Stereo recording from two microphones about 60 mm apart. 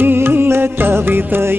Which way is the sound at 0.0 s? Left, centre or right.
Right.